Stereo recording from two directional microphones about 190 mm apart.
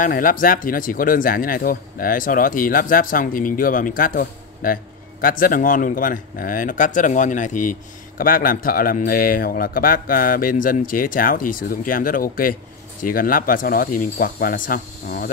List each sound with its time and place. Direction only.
0.0 s speech: 45° left (ahead or behind)